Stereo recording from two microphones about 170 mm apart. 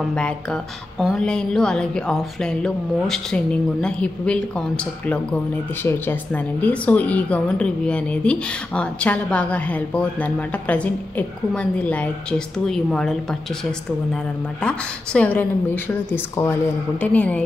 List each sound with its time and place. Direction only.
0.1 s speech: 5° left (ahead or behind)